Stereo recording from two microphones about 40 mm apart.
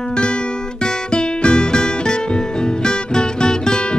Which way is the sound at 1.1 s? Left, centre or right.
Left.